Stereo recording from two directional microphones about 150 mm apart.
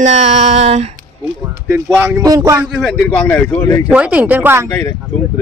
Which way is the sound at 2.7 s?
5° left (ahead or behind).